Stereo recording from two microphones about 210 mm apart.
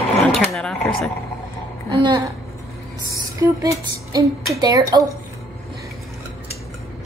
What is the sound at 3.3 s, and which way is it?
Speech, 15° right (ahead or behind).